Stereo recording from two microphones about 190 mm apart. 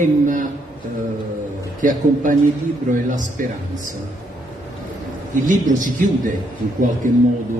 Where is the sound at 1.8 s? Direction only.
40° right (ahead or behind).